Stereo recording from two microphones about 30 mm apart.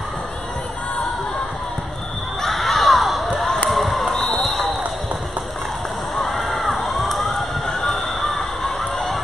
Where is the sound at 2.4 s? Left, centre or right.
Centre.